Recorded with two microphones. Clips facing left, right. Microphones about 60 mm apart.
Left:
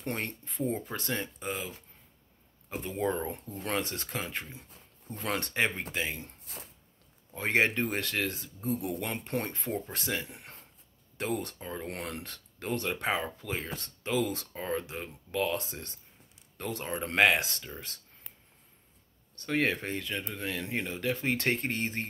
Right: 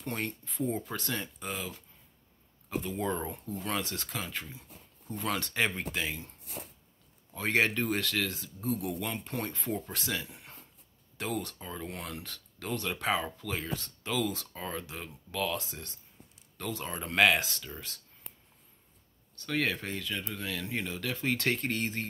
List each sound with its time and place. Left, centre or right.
0.0 s speech: left
0.6 s speech: centre
0.9 s speech: left
2.8 s speech: left
5.5 s speech: centre
7.3 s speech: left
11.9 s speech: left
19.3 s speech: left